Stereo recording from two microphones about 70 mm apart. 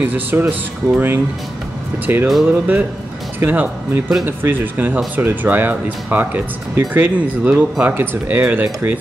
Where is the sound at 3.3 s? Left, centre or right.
Right.